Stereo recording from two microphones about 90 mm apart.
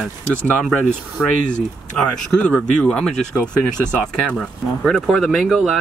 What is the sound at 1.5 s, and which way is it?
Speech, 10° left (ahead or behind).